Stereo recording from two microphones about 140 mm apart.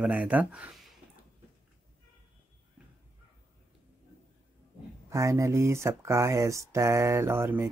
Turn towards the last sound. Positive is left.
turn(degrees=-15)  # may be behind; listen again after turning